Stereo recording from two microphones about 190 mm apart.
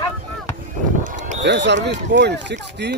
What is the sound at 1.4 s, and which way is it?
Speech, 65° right (ahead or behind).